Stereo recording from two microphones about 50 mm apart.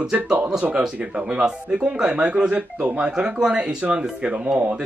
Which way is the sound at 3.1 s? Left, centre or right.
Centre.